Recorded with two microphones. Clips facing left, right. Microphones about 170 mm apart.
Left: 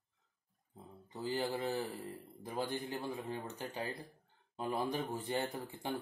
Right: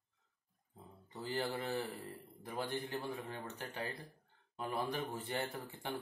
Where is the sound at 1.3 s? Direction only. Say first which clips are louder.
Left 2 dB; 20° left (ahead or behind).